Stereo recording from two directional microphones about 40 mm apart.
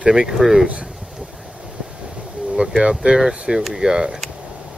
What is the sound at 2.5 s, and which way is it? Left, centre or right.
Speech, right.